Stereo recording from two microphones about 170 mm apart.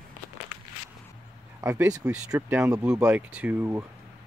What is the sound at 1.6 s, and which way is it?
Speech, 10° right (ahead or behind).